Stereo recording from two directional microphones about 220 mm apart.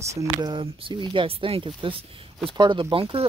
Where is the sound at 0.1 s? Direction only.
15° right (ahead or behind).